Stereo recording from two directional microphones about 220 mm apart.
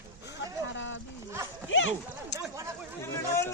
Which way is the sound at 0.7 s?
55° left (ahead or behind).